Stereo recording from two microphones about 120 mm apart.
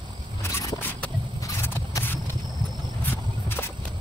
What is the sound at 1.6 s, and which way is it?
Vehicle, 20° left (ahead or behind).